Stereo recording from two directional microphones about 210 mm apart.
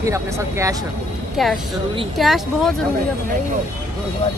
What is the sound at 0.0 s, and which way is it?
Speech, 15° right (ahead or behind).